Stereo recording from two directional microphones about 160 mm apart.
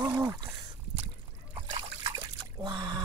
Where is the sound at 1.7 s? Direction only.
35° right (ahead or behind).